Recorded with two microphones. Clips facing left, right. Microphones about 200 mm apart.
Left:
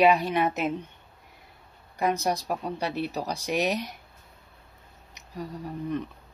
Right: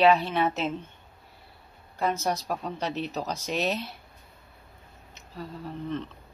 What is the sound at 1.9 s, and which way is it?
Speech, 15° left (ahead or behind).